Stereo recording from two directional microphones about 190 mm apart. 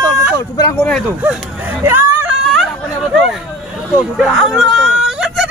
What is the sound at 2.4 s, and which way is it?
Chatter, centre (ahead or behind).